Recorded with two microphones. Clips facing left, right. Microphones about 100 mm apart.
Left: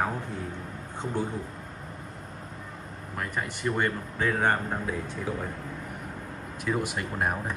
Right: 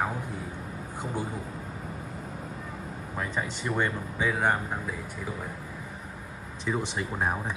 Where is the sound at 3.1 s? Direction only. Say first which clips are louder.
Even; 10° right (ahead or behind).